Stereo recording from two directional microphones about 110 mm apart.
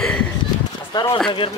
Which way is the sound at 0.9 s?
40° left (ahead or behind).